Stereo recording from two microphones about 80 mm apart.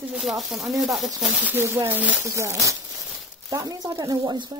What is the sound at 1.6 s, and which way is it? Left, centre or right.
Speech, right.